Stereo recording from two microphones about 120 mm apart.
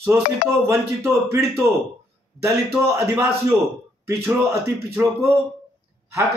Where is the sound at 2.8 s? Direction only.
20° right (ahead or behind).